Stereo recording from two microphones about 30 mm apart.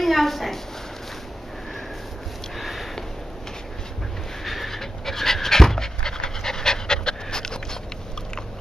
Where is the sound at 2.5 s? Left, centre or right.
Centre.